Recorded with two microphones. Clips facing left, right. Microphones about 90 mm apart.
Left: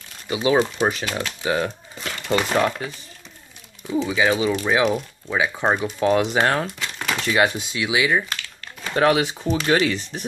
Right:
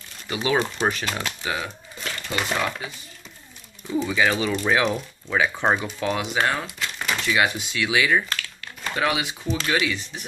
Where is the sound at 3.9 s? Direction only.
20° left (ahead or behind); by 5.9 s 5° left (ahead or behind).